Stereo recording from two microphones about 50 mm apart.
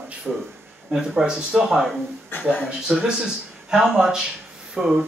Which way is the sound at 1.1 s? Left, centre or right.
Centre.